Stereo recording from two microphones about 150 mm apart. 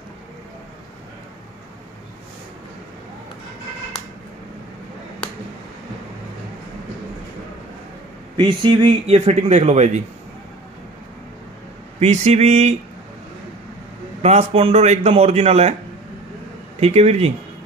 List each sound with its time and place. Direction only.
8.4 s a man's voice: 35° right (ahead or behind); by 10.0 s 50° right (ahead or behind)
12.0 s a man's voice: 50° right (ahead or behind)
14.2 s a man's voice: 45° right (ahead or behind)
16.8 s a man's voice: 45° right (ahead or behind)